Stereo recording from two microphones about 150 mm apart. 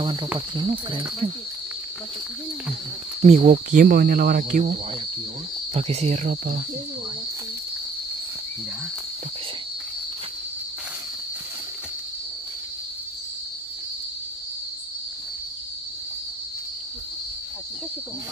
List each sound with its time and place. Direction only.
0.0 s speech: 30° right (ahead or behind)
3.2 s cricket: 45° right (ahead or behind)
5.7 s speech: 45° right (ahead or behind)
6.3 s speech: 90° right